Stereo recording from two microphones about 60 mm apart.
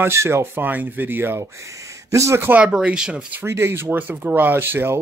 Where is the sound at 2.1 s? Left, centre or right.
Right.